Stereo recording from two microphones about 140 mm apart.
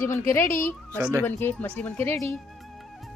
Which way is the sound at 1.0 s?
15° right (ahead or behind).